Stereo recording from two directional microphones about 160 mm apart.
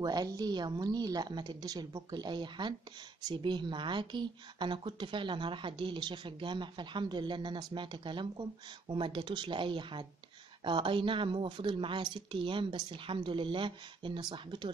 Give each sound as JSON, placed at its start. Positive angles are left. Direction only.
{"t": 0.0, "sound": "a woman's voice", "side_deg": -25}